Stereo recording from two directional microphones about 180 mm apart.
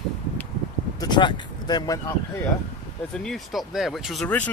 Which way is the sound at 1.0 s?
25° left (ahead or behind).